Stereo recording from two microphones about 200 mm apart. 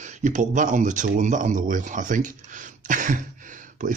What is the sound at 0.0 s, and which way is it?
Speech, 35° right (ahead or behind).